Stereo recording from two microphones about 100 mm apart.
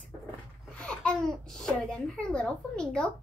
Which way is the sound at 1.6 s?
10° left (ahead or behind).